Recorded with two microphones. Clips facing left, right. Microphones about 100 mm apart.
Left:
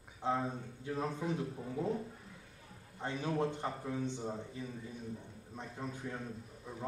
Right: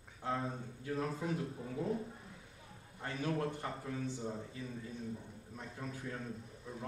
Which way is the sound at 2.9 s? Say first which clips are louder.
Left 2 dB; 20° left (ahead or behind).